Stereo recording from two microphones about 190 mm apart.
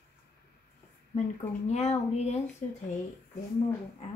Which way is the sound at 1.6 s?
35° left (ahead or behind).